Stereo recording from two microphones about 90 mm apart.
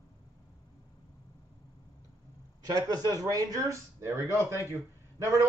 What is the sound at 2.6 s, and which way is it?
Speech, 45° right (ahead or behind).